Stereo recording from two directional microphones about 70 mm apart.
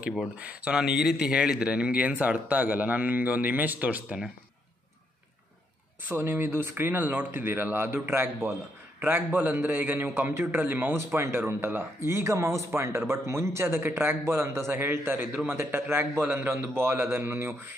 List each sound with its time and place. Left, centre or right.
0.4 s a man's voice: right
0.7 s a man's voice: centre
6.0 s a man's voice: right